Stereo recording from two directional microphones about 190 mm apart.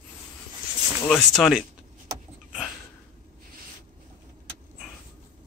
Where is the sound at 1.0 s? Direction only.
Centre (ahead or behind).